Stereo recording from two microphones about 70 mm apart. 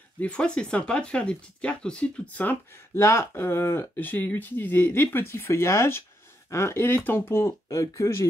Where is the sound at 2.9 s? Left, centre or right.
Left.